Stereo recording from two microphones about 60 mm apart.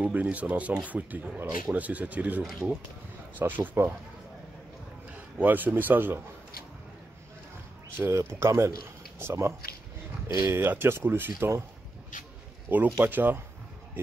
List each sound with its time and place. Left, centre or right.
0.0 s speech: right
5.4 s speech: right
8.0 s speech: right
12.6 s speech: right